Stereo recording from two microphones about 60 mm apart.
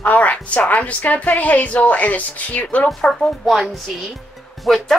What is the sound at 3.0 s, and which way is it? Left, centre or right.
Speech, centre.